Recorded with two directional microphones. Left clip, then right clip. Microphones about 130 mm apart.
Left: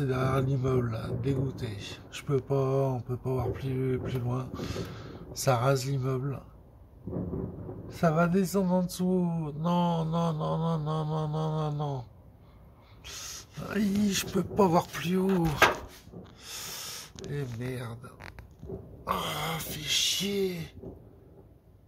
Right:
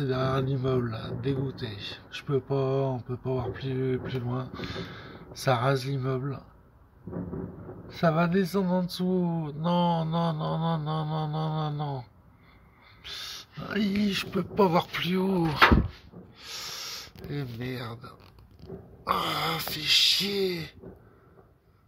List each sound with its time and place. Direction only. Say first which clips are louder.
0.0 s speech: right 1 dB; 20° right (ahead or behind)
7.9 s speech: right 1 dB; 20° right (ahead or behind)
13.0 s a sound: right 4 dB; 15° right (ahead or behind)
13.6 s speech: right 1 dB; 20° right (ahead or behind)
14.0 s speech: right 1 dB; centre (ahead or behind)
14.9 s speech: right 1 dB; 20° right (ahead or behind)
16.3 s a sound: right 3 dB; 20° right (ahead or behind); by 18.1 s 35° right (ahead or behind)
19.0 s speech: right 4 dB; 45° right (ahead or behind)